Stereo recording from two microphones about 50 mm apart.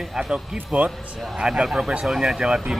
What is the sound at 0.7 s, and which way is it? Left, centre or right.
Speech, right.